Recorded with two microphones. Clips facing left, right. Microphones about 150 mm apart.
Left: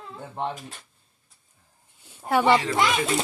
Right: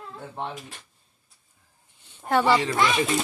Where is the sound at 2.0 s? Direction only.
10° left (ahead or behind).